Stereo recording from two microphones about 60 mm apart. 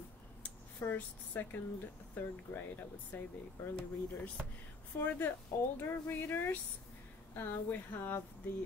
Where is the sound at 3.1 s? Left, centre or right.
Left.